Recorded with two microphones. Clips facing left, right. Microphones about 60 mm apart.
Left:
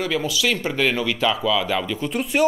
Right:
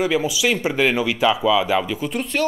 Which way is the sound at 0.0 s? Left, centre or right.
Centre.